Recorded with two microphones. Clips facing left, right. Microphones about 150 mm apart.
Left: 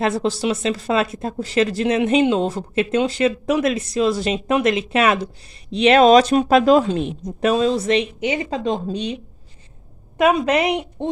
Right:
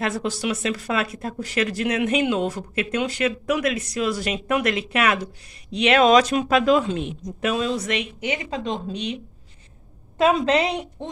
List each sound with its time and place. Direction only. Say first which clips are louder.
0.0 s speech: left 5 dB; 25° left (ahead or behind)
10.1 s a woman's voice: left 2 dB; 15° left (ahead or behind)